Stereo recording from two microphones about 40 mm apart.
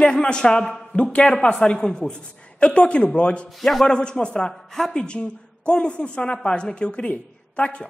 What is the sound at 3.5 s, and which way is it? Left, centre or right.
Speech, centre.